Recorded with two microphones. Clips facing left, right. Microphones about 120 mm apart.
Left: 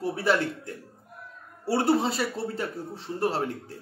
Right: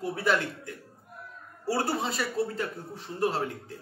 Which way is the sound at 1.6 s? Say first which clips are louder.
Left 5 dB; 30° left (ahead or behind).